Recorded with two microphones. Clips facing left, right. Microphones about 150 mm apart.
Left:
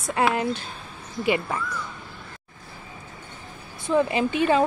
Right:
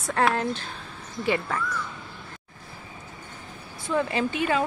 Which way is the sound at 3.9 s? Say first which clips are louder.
Left 4 dB; 20° left (ahead or behind).